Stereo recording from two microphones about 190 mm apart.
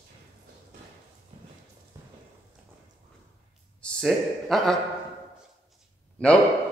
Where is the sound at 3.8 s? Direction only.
5° left (ahead or behind).